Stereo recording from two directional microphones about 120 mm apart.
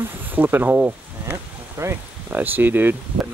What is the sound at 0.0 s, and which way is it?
Snake, 15° right (ahead or behind).